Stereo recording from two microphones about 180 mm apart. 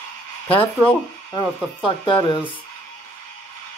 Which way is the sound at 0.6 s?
10° left (ahead or behind).